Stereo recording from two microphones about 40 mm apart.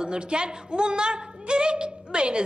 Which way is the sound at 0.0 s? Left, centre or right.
Right.